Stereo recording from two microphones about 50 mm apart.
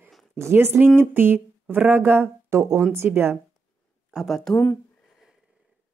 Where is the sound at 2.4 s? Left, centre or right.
Right.